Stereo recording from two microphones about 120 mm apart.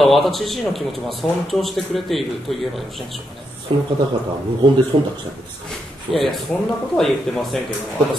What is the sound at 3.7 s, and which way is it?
Speech, 50° right (ahead or behind).